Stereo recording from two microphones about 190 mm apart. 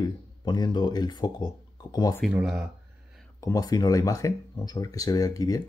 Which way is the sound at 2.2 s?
5° right (ahead or behind).